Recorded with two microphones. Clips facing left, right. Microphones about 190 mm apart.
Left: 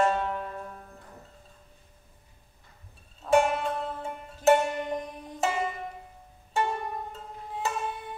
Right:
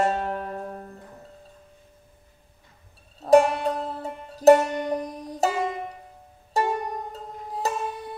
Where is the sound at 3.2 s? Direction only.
35° right (ahead or behind).